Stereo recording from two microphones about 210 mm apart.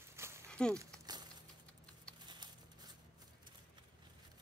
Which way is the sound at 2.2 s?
20° right (ahead or behind).